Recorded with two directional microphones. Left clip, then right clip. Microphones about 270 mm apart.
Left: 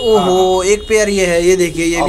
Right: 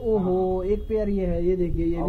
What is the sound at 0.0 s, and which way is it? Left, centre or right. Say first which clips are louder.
Speech: left 12 dB; left.